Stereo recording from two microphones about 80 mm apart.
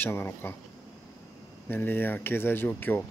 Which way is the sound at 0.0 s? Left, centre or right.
Left.